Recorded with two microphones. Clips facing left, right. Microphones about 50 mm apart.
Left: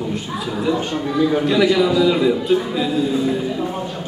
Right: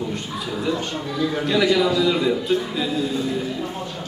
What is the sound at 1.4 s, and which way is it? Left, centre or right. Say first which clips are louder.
A man's voice: right 1 dB; centre.